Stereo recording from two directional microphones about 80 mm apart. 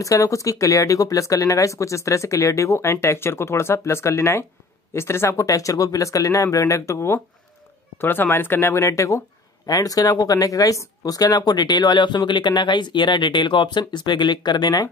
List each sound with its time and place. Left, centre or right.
0.0 s speech: left
8.0 s speech: left
9.7 s speech: left